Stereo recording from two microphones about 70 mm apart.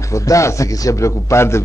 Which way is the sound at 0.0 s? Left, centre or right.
Left.